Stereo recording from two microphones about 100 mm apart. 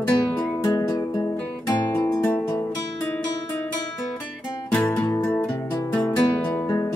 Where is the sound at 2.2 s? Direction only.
15° left (ahead or behind).